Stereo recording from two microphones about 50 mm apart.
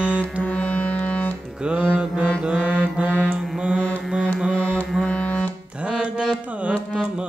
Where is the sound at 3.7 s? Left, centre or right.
Left.